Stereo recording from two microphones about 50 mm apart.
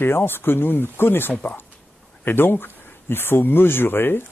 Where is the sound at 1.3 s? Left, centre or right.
Left.